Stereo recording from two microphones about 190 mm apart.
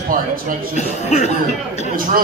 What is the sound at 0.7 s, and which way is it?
Speech, 35° left (ahead or behind).